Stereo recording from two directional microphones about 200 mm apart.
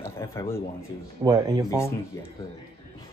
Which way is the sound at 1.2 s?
20° right (ahead or behind).